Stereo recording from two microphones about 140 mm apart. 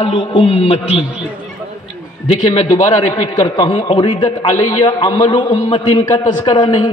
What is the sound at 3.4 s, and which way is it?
A man's voice, 35° left (ahead or behind).